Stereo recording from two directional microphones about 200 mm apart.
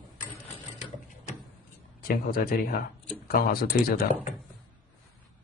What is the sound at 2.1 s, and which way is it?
Speech, 45° left (ahead or behind).